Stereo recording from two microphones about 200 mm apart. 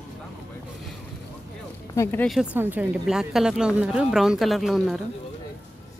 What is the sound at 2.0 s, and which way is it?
A woman's voice, 10° left (ahead or behind).